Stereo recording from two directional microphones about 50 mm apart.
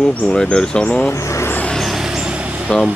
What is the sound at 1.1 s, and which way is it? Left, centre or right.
Speech, left.